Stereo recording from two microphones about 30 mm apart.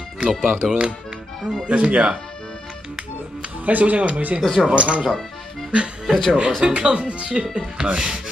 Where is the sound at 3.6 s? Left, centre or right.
Right.